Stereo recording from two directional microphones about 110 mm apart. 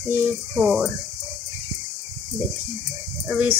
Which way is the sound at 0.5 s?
5° right (ahead or behind).